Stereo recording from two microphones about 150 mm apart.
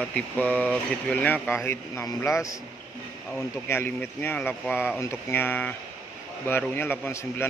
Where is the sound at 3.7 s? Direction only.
15° left (ahead or behind).